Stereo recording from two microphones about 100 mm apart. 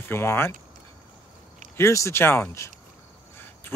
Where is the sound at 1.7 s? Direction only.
30° left (ahead or behind).